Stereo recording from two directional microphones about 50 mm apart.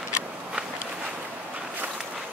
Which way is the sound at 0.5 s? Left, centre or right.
Centre.